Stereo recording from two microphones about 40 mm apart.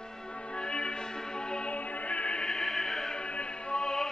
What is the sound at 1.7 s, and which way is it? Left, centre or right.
Music, left.